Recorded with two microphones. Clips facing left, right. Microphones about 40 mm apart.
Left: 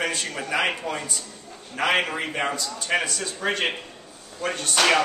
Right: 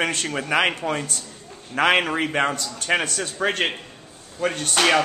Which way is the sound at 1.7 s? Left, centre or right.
Right.